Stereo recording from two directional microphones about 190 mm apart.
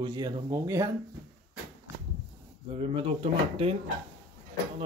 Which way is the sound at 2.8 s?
30° right (ahead or behind).